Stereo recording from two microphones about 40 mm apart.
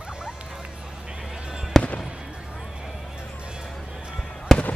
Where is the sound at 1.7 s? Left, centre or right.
Centre.